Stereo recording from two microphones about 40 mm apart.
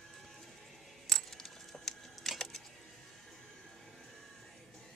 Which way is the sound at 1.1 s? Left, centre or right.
Centre.